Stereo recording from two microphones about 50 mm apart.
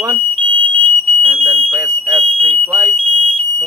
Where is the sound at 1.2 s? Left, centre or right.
Centre.